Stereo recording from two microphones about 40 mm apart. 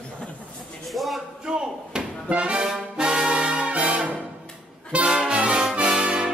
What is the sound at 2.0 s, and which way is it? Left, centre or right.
Music, centre.